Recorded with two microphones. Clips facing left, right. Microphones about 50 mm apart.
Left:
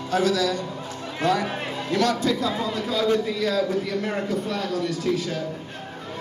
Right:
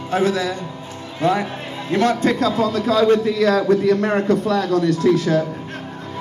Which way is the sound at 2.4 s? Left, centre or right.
Right.